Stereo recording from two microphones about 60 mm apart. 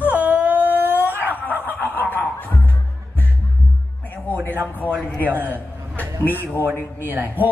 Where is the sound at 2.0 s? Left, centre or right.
Left.